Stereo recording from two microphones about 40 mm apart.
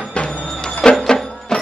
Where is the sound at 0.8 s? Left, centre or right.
Centre.